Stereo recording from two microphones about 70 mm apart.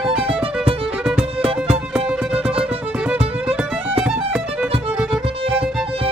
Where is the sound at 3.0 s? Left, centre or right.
Centre.